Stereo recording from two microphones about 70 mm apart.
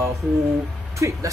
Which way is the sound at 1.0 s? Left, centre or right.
Right.